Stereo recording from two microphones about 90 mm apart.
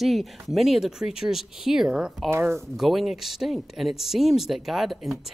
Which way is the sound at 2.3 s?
30° right (ahead or behind).